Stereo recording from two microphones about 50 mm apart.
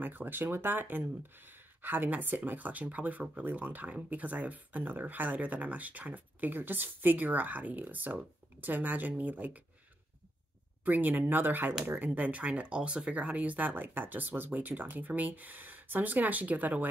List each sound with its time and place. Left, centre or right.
0.0 s speech: right
10.8 s speech: right